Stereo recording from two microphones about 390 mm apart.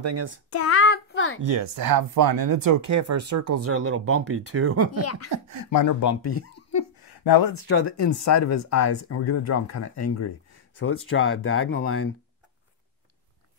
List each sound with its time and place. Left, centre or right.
0.0 s a child's voice: right
0.5 s a sound: left
1.4 s speech: right
5.3 s speech: right
5.7 s speech: left
7.6 s speech: left
8.0 s speech: left